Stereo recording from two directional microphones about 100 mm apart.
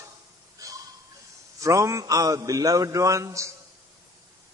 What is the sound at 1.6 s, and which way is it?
A man's voice, 30° right (ahead or behind).